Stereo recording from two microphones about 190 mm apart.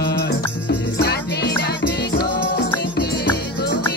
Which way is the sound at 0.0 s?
60° left (ahead or behind).